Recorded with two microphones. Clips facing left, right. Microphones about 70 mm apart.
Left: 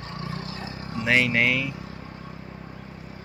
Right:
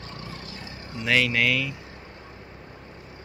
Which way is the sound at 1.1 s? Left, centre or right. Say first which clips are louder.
Left 1 dB; left.